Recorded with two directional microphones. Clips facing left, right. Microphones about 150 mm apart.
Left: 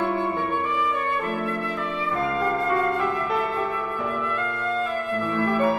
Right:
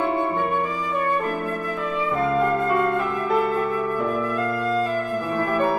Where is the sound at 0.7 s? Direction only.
40° right (ahead or behind).